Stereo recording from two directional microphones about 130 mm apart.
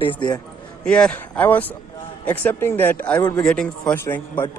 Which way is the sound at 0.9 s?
10° left (ahead or behind).